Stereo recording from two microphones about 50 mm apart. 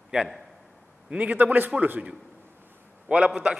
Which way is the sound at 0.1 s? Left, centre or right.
Centre.